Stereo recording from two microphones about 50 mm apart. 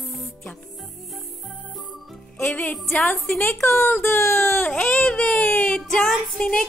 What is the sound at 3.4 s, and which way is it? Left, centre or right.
Speech, left.